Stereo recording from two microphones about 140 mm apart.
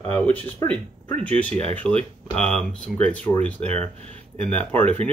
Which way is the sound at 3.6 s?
50° right (ahead or behind).